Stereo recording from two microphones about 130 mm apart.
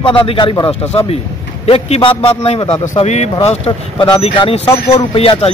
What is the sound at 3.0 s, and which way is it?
A man's voice, 60° left (ahead or behind).